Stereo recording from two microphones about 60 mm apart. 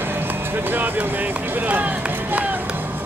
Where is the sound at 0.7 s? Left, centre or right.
Right.